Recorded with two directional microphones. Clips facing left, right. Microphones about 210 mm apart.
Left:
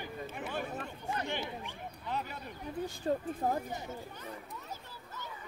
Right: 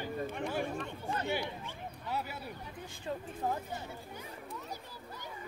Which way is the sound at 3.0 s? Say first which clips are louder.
Left 4 dB; 40° left (ahead or behind).